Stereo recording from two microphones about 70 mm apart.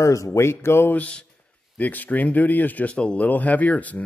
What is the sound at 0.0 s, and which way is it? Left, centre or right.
Speech, left.